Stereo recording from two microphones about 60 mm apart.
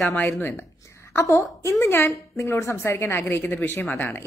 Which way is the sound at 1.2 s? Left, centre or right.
Left.